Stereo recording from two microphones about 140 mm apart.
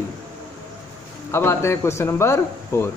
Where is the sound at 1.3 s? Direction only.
20° left (ahead or behind).